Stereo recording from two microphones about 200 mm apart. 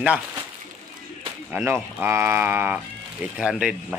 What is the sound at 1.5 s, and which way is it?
Speech, 10° right (ahead or behind).